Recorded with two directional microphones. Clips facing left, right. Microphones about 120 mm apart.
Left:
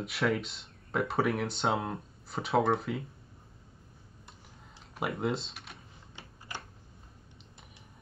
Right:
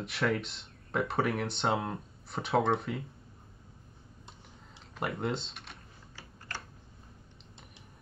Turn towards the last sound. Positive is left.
turn(degrees=20)  # may be behind; listen again after turning